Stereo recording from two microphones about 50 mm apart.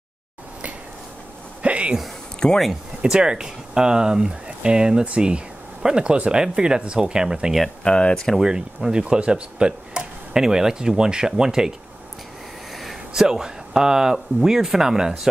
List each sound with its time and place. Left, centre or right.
1.6 s a sound: right
2.4 s speech: centre
3.0 s speech: centre
7.8 s speech: centre
8.4 s speech: centre
12.7 s speech: centre